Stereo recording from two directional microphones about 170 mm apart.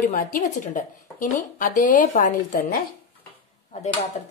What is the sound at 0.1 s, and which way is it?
A woman's voice, 50° left (ahead or behind).